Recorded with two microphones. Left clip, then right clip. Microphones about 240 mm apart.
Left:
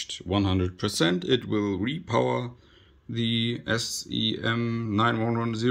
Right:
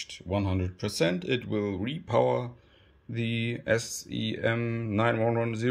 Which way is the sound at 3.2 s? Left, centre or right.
Right.